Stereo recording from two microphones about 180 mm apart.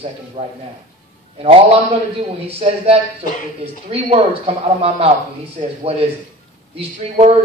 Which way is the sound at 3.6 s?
35° right (ahead or behind).